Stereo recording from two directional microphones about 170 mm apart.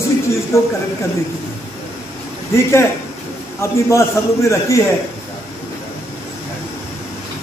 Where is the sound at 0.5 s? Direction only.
15° left (ahead or behind).